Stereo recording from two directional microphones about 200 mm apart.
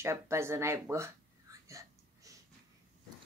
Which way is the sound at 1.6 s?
15° right (ahead or behind).